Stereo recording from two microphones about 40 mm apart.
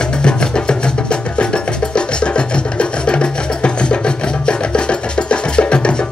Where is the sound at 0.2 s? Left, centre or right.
Left.